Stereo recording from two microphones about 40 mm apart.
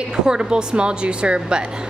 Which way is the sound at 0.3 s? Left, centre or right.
Right.